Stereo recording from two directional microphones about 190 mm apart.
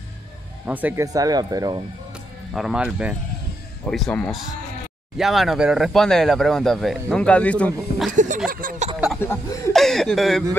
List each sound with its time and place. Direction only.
0.7 s speech: 10° right (ahead or behind)
2.5 s speech: 5° right (ahead or behind)
8.1 s a sound: 40° right (ahead or behind)
9.7 s speech: centre (ahead or behind)